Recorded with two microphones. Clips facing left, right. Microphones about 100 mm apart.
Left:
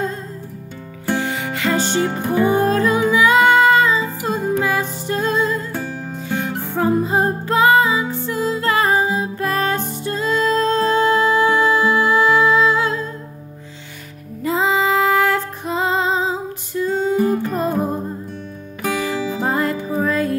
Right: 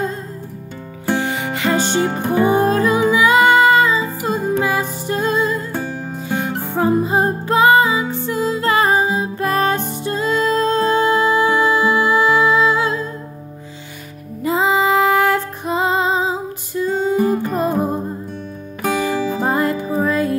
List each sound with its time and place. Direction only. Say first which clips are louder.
1.1 s music: right 1 dB; 20° right (ahead or behind)
5.7 s music: right 2 dB; 25° right (ahead or behind)
6.7 s music: right 1 dB; 15° right (ahead or behind)
14.4 s female singing: right 2 dB; 15° right (ahead or behind)
18.8 s music: right 3 dB; 40° right (ahead or behind)
19.4 s music: even; 20° right (ahead or behind)